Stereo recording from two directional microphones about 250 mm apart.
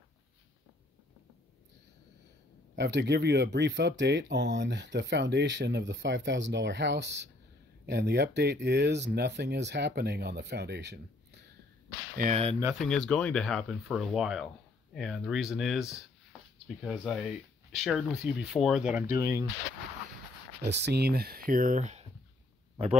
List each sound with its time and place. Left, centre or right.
2.7 s speech: right
12.2 s speech: right
12.7 s speech: centre
20.6 s speech: right